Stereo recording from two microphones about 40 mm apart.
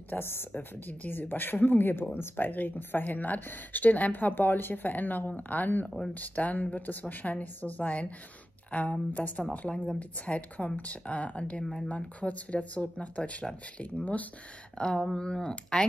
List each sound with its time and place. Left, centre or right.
0.2 s a woman's voice: left
0.6 s speech: left
2.1 s speech: left
11.6 s speech: centre
11.9 s speech: left
14.8 s speech: left